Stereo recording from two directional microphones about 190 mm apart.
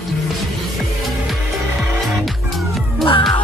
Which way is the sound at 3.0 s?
25° left (ahead or behind).